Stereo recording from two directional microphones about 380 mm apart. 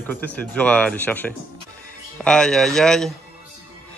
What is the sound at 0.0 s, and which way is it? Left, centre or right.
A man's voice, centre.